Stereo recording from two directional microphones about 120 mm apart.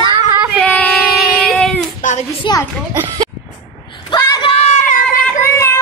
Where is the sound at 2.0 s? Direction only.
90° left.